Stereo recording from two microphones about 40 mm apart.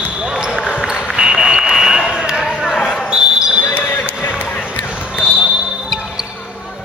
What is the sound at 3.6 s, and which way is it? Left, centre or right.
Basketball bounce, left.